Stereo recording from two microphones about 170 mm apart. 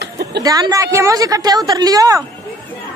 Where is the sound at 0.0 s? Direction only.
75° right (ahead or behind).